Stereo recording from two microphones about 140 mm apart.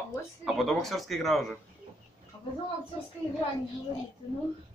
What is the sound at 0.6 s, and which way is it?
Speech, centre (ahead or behind).